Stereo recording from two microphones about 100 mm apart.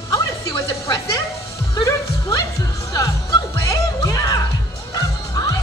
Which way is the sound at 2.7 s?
35° left (ahead or behind).